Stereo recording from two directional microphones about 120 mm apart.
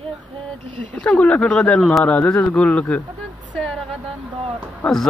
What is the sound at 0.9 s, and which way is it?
Speech, 10° left (ahead or behind).